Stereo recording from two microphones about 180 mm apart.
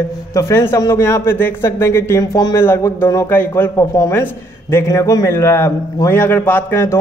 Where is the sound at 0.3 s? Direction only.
15° left (ahead or behind).